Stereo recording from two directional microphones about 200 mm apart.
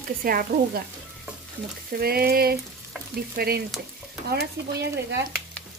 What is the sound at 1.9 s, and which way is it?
Stir, 50° right (ahead or behind).